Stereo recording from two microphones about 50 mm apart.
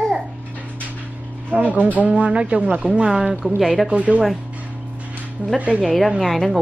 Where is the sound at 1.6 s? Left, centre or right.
Right; by 3.3 s centre.